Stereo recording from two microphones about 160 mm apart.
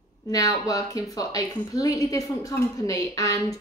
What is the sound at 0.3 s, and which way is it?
Speech, 20° left (ahead or behind).